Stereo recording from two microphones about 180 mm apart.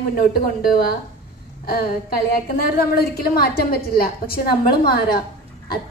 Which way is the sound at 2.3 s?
55° left (ahead or behind).